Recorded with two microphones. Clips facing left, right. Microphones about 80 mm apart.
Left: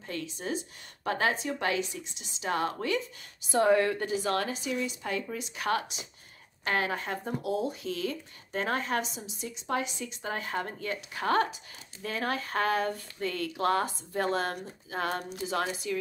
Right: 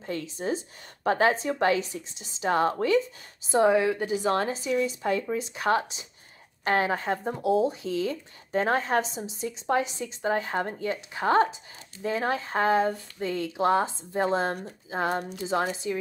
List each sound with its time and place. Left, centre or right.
0.0 s a woman's voice: right
3.5 s a woman's voice: centre
4.2 s a woman's voice: right